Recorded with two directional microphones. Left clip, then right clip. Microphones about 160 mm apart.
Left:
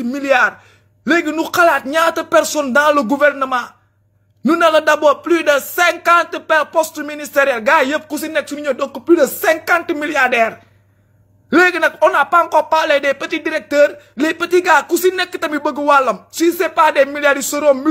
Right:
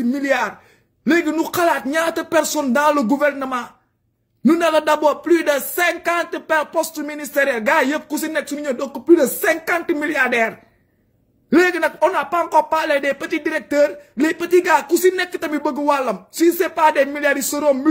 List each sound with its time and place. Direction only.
0.0 s a man's voice: 30° right (ahead or behind)
11.5 s a man's voice: 25° right (ahead or behind)